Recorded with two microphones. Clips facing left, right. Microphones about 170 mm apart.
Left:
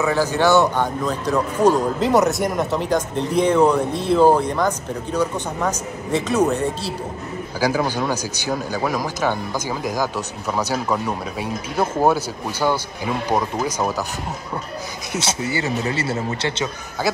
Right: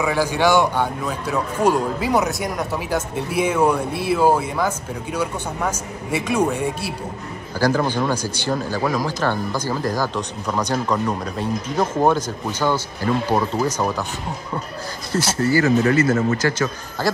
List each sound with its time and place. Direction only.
0.0 s a man's voice: 10° right (ahead or behind)
7.6 s a man's voice: 10° left (ahead or behind)
15.1 s a man's voice: 5° left (ahead or behind)
15.5 s speech: 25° left (ahead or behind)